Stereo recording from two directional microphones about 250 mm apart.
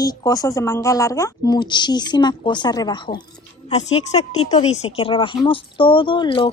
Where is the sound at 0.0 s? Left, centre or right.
Centre.